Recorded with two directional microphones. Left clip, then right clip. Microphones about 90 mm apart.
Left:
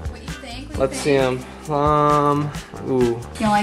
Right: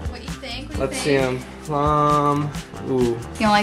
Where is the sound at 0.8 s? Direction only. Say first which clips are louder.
Left 4 dB; 15° left (ahead or behind).